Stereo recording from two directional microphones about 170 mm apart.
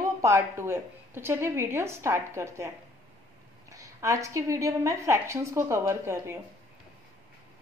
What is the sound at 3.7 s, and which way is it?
A woman's voice, 20° right (ahead or behind).